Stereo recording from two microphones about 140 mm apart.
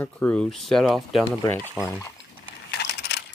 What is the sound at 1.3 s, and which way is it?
Speech, 15° left (ahead or behind).